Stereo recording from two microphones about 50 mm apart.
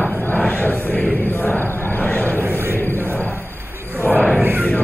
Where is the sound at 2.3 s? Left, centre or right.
Right.